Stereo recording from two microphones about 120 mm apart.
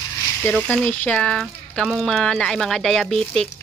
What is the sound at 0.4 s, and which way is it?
Speech, 10° left (ahead or behind).